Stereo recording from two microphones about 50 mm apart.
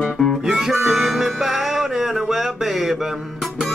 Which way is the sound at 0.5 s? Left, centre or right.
Centre.